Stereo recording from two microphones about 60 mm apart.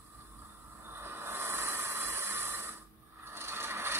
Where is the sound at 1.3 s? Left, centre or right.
Right.